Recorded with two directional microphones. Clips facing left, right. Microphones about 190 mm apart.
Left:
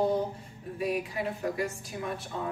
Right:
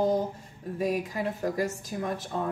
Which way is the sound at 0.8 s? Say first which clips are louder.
Right 2 dB; 40° right (ahead or behind).